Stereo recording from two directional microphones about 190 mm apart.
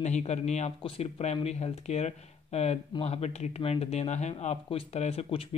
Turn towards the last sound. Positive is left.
turn(degrees=30)  # may be behind; listen again after turning